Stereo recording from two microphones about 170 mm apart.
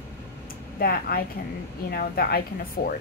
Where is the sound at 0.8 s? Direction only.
65° left (ahead or behind).